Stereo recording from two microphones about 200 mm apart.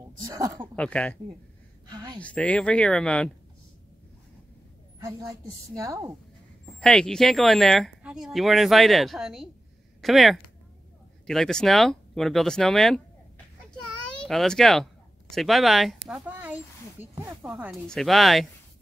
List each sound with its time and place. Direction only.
0.2 s speech: 20° right (ahead or behind)
0.7 s speech: 5° left (ahead or behind)
1.9 s a woman's voice: 20° right (ahead or behind)
2.1 s speech: 5° left (ahead or behind)
5.3 s a woman's voice: 15° right (ahead or behind)
6.8 s speech: 5° left (ahead or behind)
14.2 s speech: centre (ahead or behind); by 17.5 s 15° right (ahead or behind)
17.5 s speech: centre (ahead or behind)